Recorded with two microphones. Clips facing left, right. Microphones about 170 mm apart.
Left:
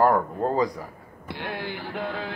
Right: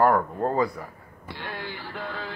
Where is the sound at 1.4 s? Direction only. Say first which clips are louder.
Left 4 dB; 60° left (ahead or behind).